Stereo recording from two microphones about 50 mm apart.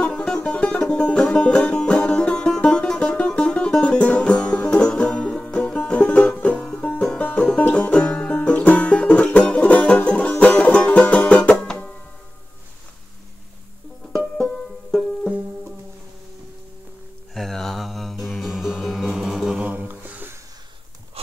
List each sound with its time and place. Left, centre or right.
0.0 s music: centre
5.9 s music: left
15.2 s music: right
17.3 s music: centre
19.6 s a sound: right
19.9 s a sound: right